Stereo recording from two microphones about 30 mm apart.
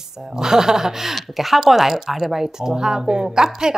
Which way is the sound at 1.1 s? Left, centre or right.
Centre.